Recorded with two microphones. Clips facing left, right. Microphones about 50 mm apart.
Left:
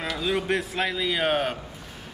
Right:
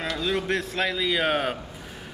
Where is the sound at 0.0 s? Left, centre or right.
Centre.